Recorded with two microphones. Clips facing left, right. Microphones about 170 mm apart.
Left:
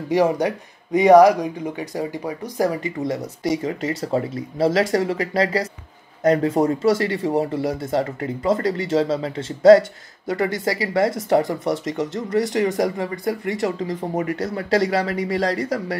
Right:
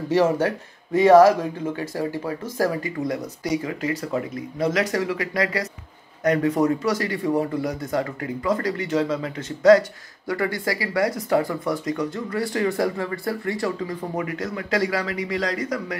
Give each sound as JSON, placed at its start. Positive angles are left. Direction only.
{"t": 0.1, "sound": "speech", "side_deg": 15}
{"t": 14.1, "sound": "speech", "side_deg": 35}